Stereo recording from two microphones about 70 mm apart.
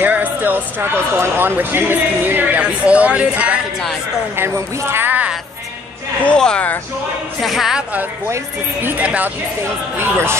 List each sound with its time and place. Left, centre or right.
0.0 s speech: right
4.4 s a woman's voice: right
5.0 s music: right
6.2 s speech: centre
7.4 s a woman's voice: centre
8.8 s speech: right
9.9 s a woman's voice: right